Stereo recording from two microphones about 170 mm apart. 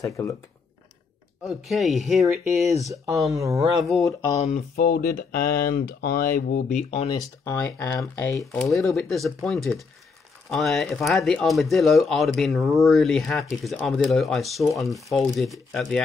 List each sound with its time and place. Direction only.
0.0 s speech: 15° left (ahead or behind)
1.4 s speech: centre (ahead or behind)
2.6 s speech: 20° right (ahead or behind)
3.7 s speech: centre (ahead or behind)
4.4 s speech: 45° left (ahead or behind)
4.7 s speech: 65° left (ahead or behind)
6.7 s speech: 45° left (ahead or behind)
7.1 s speech: 20° left (ahead or behind)
7.5 s speech: 10° left (ahead or behind)
8.5 s speech: centre (ahead or behind)